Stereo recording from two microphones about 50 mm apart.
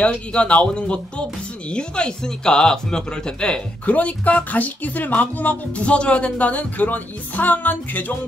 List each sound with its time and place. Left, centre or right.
0.0 s speech: left
3.8 s speech: left